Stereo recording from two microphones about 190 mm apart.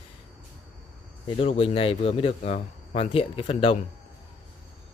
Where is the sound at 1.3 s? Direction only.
30° left (ahead or behind).